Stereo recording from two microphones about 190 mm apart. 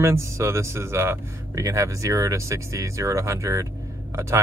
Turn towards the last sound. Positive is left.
turn(degrees=-15)  # may be behind; listen again after turning